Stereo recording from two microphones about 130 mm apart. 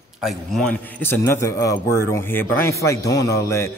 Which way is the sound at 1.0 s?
20° left (ahead or behind).